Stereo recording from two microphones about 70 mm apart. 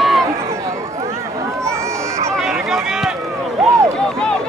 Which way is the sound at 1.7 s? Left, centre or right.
Right.